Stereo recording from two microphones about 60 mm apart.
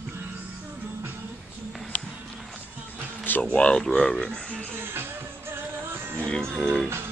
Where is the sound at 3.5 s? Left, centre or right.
Left.